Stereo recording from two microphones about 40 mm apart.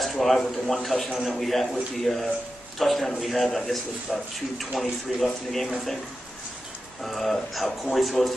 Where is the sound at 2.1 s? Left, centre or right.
Centre.